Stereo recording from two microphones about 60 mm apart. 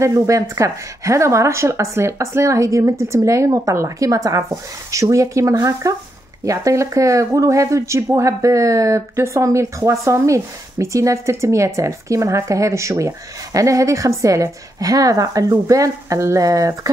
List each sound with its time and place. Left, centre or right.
0.0 s speech: right